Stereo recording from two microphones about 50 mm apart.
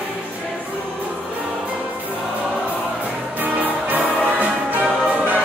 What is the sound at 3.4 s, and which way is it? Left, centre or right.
Music, right.